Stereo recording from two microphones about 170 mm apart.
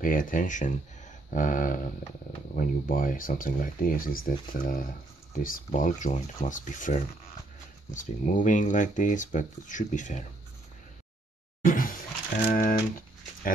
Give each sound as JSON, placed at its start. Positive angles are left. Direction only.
{"t": 0.0, "sound": "speech", "side_deg": 55}
{"t": 11.6, "sound": "a sound", "side_deg": 55}
{"t": 12.5, "sound": "speech", "side_deg": 55}